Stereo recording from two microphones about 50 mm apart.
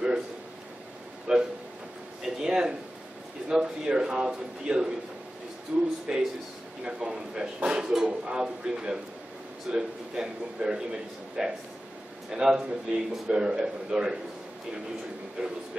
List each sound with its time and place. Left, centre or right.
1.3 s a sound: centre
6.1 s a man's voice: centre
15.4 s a man's voice: centre